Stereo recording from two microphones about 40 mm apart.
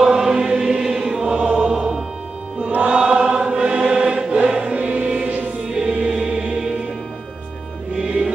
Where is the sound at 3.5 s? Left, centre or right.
Right.